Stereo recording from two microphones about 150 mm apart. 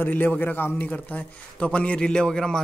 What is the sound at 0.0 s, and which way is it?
Speech, 10° left (ahead or behind).